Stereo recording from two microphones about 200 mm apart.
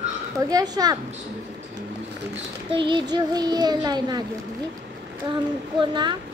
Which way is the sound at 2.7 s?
25° right (ahead or behind).